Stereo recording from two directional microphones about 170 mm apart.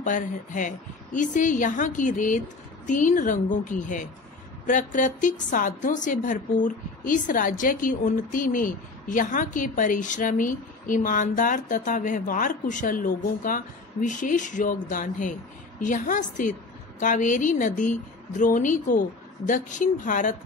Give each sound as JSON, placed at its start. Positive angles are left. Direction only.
{"t": 0.0, "sound": "a woman's voice", "side_deg": 50}